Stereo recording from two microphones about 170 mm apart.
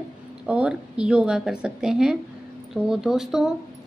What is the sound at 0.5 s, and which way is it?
A woman's voice, 5° right (ahead or behind).